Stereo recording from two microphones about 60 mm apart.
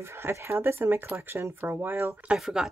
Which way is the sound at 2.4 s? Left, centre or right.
Centre.